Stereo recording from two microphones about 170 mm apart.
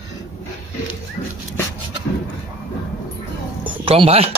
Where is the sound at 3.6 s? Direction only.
30° right (ahead or behind).